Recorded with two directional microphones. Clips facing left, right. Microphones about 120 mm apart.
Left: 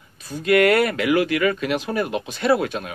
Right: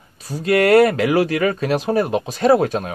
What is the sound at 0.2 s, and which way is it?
Speech, 35° right (ahead or behind).